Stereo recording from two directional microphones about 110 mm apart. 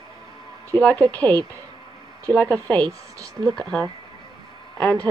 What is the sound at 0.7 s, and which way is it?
Speech, 15° left (ahead or behind).